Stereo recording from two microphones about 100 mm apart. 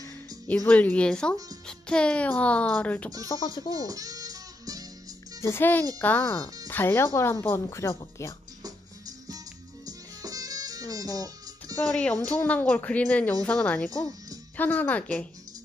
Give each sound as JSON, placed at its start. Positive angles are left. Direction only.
{"t": 0.7, "sound": "speech", "side_deg": 15}
{"t": 3.3, "sound": "speech", "side_deg": 45}
{"t": 3.7, "sound": "music", "side_deg": -35}
{"t": 5.4, "sound": "a woman's voice", "side_deg": 25}
{"t": 8.6, "sound": "music", "side_deg": -40}
{"t": 11.9, "sound": "speech", "side_deg": 15}